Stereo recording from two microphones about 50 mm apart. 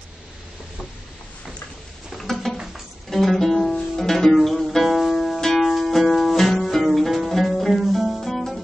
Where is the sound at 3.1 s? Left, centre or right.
Centre.